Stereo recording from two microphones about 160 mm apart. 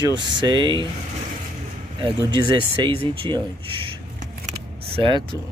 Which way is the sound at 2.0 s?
30° right (ahead or behind).